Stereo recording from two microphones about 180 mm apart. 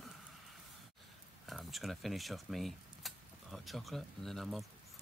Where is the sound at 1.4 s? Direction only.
Centre (ahead or behind).